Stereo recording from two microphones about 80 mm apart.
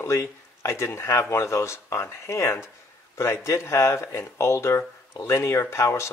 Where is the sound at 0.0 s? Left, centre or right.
Left.